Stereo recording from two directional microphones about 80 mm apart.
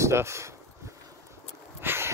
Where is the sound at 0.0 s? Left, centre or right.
Right.